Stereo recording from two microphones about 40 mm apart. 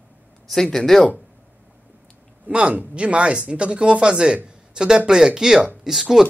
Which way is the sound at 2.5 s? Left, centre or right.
Right.